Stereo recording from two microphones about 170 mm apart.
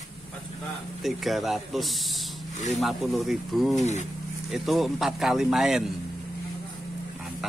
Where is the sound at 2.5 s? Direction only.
45° left (ahead or behind).